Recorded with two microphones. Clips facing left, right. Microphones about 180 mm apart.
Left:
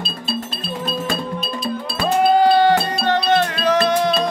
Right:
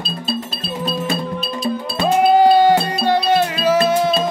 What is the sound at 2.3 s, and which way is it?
Music, 10° right (ahead or behind).